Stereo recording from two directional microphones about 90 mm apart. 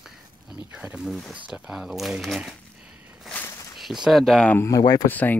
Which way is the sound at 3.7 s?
5° right (ahead or behind).